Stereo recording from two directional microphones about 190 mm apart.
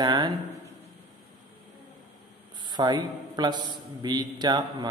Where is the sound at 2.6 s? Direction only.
25° right (ahead or behind).